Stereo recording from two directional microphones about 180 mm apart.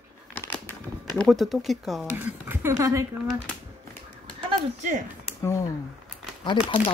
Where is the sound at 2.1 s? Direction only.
10° right (ahead or behind).